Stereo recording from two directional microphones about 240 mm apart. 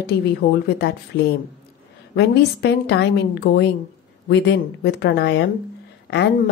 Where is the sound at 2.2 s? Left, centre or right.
Left.